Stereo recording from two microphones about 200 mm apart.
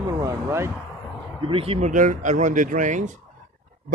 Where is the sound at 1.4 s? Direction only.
30° right (ahead or behind).